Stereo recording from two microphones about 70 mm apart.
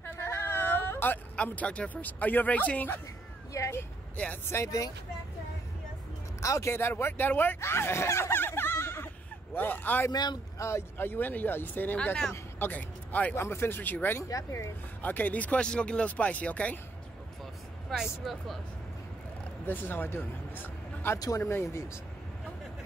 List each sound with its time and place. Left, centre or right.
0.0 s whimper: left
1.3 s speech: centre
3.5 s speech: left
4.6 s speech: left
6.4 s speech: left
6.7 s speech: left
10.1 s speech: left
10.6 s speech: left
11.0 s speech: left
13.4 s speech: left
14.3 s speech: left
15.0 s speech: left
17.9 s speech: centre
19.6 s speech: left